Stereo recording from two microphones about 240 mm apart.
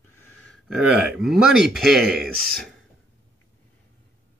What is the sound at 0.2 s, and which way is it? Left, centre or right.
Speech, centre.